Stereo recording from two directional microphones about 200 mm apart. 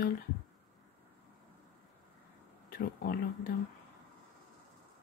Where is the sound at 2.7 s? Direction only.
50° left (ahead or behind).